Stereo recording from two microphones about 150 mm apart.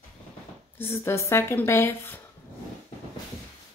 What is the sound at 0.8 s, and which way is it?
Speech, 15° left (ahead or behind).